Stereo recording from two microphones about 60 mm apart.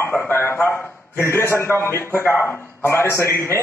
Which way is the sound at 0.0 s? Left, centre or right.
Left.